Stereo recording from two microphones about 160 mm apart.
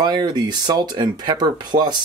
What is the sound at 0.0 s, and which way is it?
Speech, 25° right (ahead or behind).